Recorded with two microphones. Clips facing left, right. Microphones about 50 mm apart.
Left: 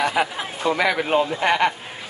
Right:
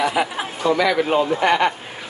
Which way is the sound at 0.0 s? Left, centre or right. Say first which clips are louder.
Right 1 dB; centre.